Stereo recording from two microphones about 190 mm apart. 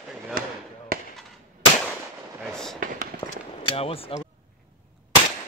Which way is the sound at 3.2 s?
20° left (ahead or behind).